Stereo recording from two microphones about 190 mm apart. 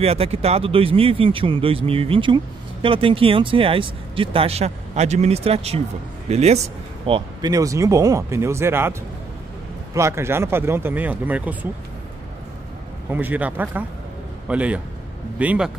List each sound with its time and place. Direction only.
0.0 s speech: 30° right (ahead or behind); by 8.9 s 10° right (ahead or behind)
9.9 s speech: 15° right (ahead or behind)
13.1 s speech: 10° right (ahead or behind)